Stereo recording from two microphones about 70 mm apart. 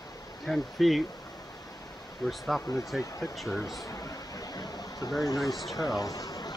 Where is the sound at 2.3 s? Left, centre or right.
Centre.